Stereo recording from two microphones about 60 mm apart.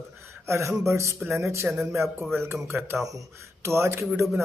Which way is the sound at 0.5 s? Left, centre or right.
Right.